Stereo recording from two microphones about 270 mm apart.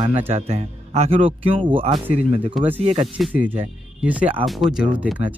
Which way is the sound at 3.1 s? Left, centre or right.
Centre.